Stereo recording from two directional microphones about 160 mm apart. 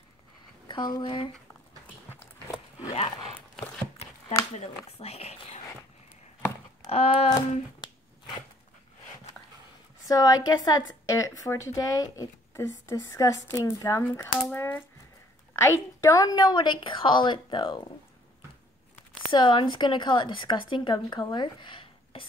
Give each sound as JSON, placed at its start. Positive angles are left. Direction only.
{"t": 0.7, "sound": "a woman's voice", "side_deg": 25}
{"t": 4.6, "sound": "speech", "side_deg": 40}
{"t": 6.9, "sound": "a sound", "side_deg": 40}
{"t": 10.0, "sound": "a woman's voice", "side_deg": 25}
{"t": 19.3, "sound": "a woman's voice", "side_deg": 30}